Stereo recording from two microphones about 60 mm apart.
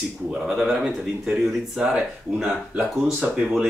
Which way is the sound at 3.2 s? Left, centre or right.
Centre.